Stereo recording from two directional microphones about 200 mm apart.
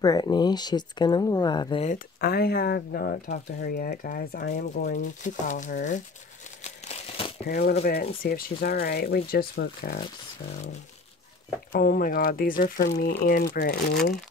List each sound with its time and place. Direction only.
0.0 s speech: 20° left (ahead or behind)
1.9 s speech: 50° left (ahead or behind)
4.9 s speech: 40° left (ahead or behind)
6.6 s crumpling: 35° left (ahead or behind)
7.4 s speech: 50° left (ahead or behind)
11.7 s speech: 50° left (ahead or behind)